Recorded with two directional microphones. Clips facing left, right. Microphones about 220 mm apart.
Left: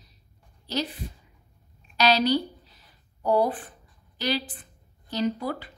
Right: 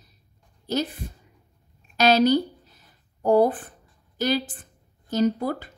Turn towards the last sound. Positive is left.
turn(degrees=-45)  # may be behind; listen again after turning